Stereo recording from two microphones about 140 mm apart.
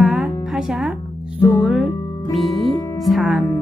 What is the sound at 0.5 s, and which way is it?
Speech, 5° right (ahead or behind).